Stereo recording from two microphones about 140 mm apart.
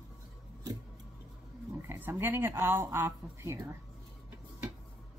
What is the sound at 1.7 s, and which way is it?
Speech, 20° right (ahead or behind).